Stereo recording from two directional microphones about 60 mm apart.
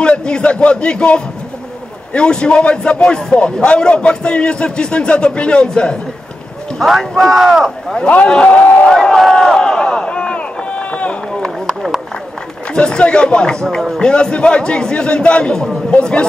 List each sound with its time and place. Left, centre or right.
0.0 s a man's voice: centre
7.0 s speech: centre
8.1 s a man's voice: centre
8.9 s a sound: centre
11.6 s a sound: centre
12.7 s a man's voice: centre